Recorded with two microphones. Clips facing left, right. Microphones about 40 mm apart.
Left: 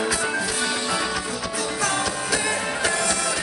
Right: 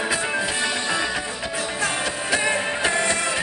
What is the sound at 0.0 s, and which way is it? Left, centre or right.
Music, right.